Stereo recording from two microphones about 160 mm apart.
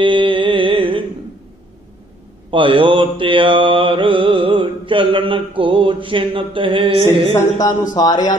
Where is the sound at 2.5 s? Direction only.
35° right (ahead or behind).